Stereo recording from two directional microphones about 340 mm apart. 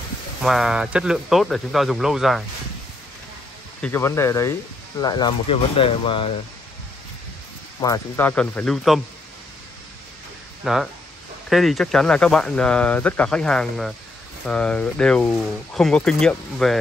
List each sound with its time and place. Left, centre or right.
0.4 s speech: centre
3.8 s speech: centre
7.8 s speech: centre
10.6 s speech: centre